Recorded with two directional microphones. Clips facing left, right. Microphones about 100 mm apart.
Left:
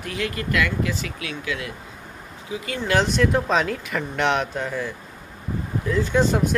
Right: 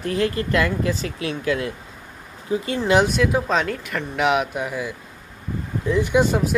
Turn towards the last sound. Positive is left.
turn(degrees=-15)  # may be behind; listen again after turning